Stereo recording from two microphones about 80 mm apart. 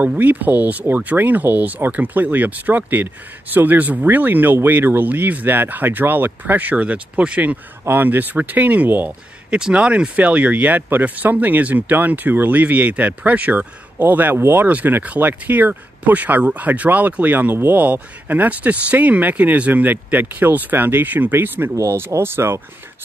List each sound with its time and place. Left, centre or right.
0.0 s speech: centre
9.6 s speech: centre; by 22.6 s right